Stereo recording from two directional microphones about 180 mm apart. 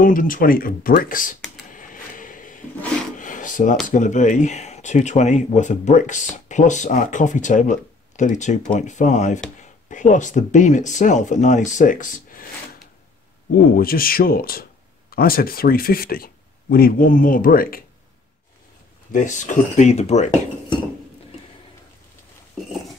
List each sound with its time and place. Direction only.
0.0 s speech: 50° left (ahead or behind)
1.7 s a sound: 45° left (ahead or behind)
3.2 s filing: 45° left (ahead or behind)
3.9 s speech: 45° left (ahead or behind)
19.1 s speech: 45° left (ahead or behind)